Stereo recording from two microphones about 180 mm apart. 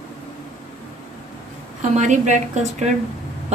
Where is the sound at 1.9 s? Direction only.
40° right (ahead or behind).